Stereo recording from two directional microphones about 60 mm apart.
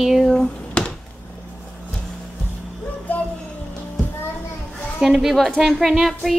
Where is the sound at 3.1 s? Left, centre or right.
Left.